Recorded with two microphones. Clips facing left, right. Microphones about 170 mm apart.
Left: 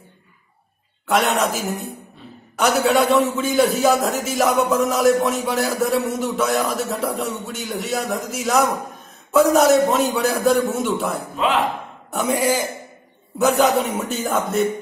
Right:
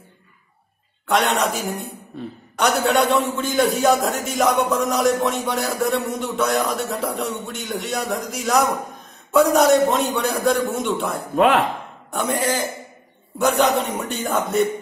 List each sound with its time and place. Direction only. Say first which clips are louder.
1.0 s a man's voice: left 1 dB; centre (ahead or behind)
11.3 s speech: right 5 dB; 55° right (ahead or behind)
12.1 s a man's voice: left 2 dB; 10° left (ahead or behind)